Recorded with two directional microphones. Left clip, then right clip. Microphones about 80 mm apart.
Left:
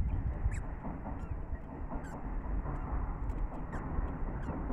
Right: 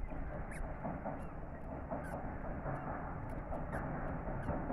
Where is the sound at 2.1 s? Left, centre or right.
Right.